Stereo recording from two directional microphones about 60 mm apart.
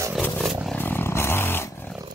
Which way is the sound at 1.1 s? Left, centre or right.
Left.